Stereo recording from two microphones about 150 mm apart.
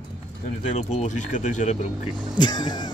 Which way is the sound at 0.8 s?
55° left (ahead or behind).